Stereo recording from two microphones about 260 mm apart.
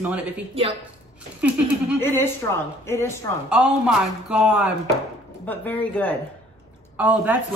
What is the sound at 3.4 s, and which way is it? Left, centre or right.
Speech, centre.